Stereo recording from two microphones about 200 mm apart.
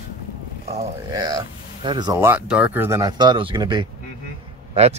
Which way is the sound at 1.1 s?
20° right (ahead or behind).